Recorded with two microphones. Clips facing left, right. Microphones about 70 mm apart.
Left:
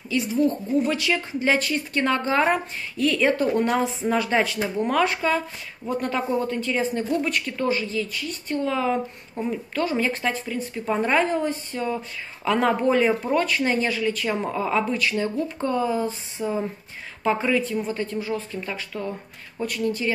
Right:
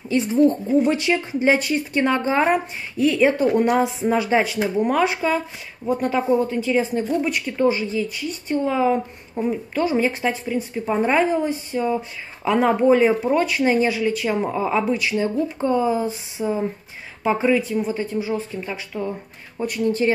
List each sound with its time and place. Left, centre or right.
0.1 s a woman's voice: right